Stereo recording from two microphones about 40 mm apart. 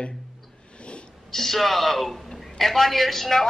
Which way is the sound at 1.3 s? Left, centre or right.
Centre.